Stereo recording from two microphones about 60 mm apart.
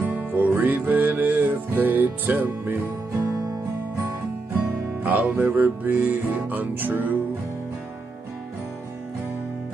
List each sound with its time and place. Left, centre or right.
0.0 s music: right
5.0 s music: right